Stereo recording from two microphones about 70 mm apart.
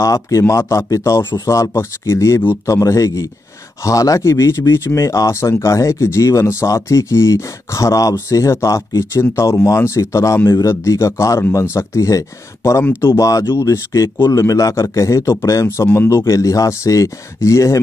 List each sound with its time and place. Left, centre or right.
0.0 s speech: left
13.0 s speech: left
13.3 s speech: left